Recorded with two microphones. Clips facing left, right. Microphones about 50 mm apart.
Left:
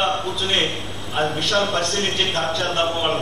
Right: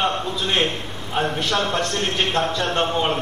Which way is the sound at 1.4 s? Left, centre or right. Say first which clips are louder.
Left 1 dB; right.